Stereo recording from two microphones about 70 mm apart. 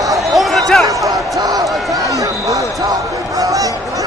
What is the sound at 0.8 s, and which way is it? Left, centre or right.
Basketball bounce, right.